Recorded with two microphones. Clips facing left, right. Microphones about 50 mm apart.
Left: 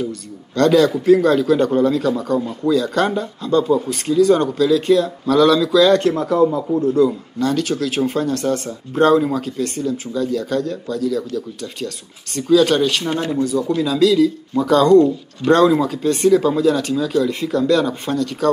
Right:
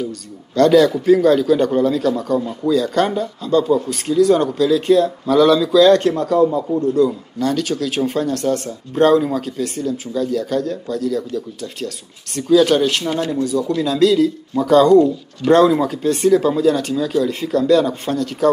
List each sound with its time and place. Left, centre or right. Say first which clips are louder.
0.6 s speech: right 2 dB; centre
12.4 s speech: right 1 dB; centre
13.1 s speech: even; left
13.5 s speech: even; centre